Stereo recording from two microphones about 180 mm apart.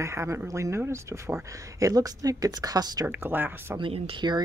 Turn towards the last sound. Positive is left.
turn(degrees=-25)  # may be behind; listen again after turning